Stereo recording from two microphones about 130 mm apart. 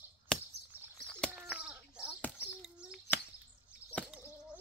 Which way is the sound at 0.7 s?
15° right (ahead or behind).